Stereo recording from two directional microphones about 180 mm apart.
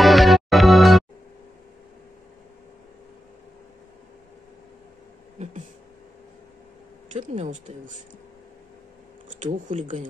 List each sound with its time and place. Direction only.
0.0 s music: centre (ahead or behind)
7.1 s a sound: 40° right (ahead or behind)
9.4 s speech: 45° right (ahead or behind)